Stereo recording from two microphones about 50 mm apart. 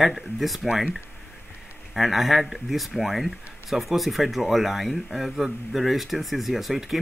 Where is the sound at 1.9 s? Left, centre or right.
Centre.